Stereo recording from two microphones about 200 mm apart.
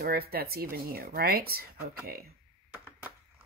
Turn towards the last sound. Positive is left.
turn(degrees=-10)  # may be behind; listen again after turning